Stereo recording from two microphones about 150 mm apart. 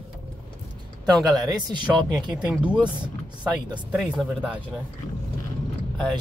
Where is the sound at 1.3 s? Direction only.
30° right (ahead or behind).